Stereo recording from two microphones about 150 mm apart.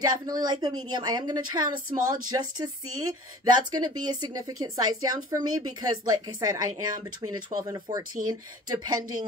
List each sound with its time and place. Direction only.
0.0 s a woman's voice: 30° right (ahead or behind)